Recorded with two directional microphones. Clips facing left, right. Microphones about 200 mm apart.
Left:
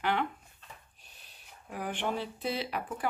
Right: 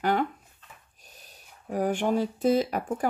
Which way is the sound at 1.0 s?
40° right (ahead or behind).